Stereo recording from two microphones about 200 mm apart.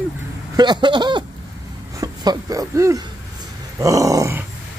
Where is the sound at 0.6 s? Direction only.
20° right (ahead or behind).